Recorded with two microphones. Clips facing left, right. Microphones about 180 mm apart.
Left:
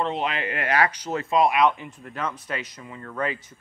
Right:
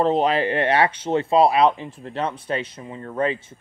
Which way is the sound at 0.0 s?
35° right (ahead or behind).